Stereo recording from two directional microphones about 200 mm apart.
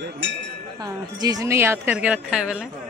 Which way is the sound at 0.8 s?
20° right (ahead or behind).